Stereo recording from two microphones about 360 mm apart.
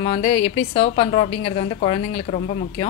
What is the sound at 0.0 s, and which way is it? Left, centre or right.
A woman's voice, centre.